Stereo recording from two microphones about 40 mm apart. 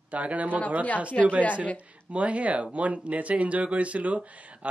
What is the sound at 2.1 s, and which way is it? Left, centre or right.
Speech, right.